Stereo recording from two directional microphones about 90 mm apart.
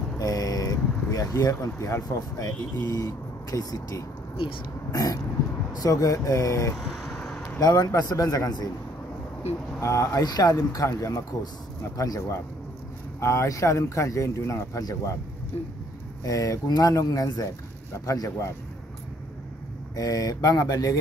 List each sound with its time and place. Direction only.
0.2 s speech: 40° left (ahead or behind)
6.8 s vehicle: centre (ahead or behind)
7.6 s a man's voice: 45° left (ahead or behind)
9.8 s speech: 35° left (ahead or behind)
16.3 s speech: 40° left (ahead or behind)
20.0 s speech: 40° left (ahead or behind)